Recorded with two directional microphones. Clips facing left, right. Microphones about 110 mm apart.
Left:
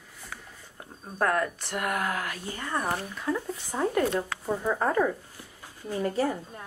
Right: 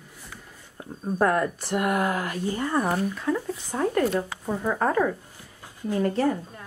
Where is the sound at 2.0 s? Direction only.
35° right (ahead or behind).